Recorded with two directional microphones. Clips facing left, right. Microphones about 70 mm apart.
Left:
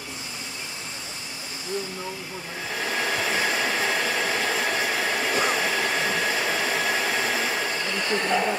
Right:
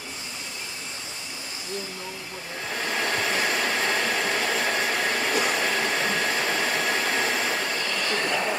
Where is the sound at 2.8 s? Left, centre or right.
Centre.